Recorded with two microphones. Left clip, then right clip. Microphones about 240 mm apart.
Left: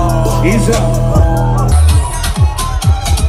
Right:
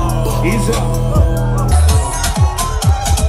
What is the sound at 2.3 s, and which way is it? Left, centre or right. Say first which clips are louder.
Music: even; right.